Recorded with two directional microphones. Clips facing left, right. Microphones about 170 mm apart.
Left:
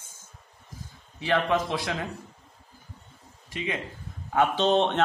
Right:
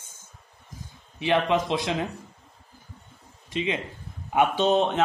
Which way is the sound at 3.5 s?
25° right (ahead or behind).